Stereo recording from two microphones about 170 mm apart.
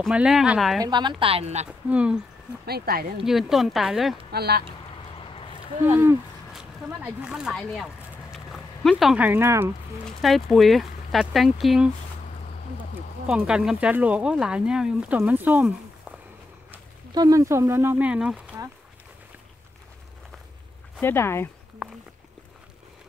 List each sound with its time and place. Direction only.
0.0 s speech: 5° right (ahead or behind)
0.8 s speech: 25° right (ahead or behind)
1.9 s speech: 5° right (ahead or behind)
2.6 s speech: 65° right (ahead or behind)
3.3 s speech: centre (ahead or behind)
4.3 s speech: 70° right (ahead or behind)
5.2 s a sound: 30° left (ahead or behind)
5.9 s speech: 15° right (ahead or behind)
10.0 s speech: centre (ahead or behind)
13.3 s speech: 5° right (ahead or behind)
17.1 s speech: 20° right (ahead or behind); by 18.4 s 5° right (ahead or behind)
21.0 s speech: 15° left (ahead or behind)